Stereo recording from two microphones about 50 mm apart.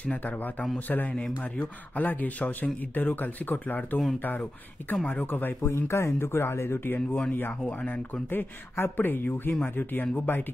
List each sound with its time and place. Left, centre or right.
0.0 s speech: left
5.2 s speech: left
7.8 s speech: left